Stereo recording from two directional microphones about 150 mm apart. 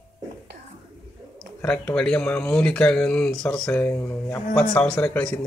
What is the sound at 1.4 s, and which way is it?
Speech, 10° left (ahead or behind).